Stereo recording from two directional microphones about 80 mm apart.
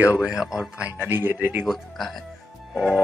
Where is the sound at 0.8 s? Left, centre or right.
Right.